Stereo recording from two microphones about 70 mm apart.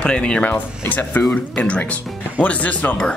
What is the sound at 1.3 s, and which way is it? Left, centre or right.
Speech, centre.